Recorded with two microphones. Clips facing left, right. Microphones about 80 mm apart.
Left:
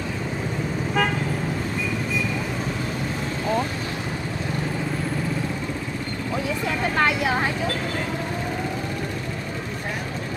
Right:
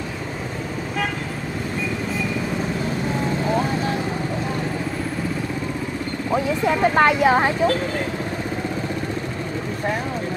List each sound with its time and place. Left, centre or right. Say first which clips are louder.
7.0 s speech: right 5 dB; right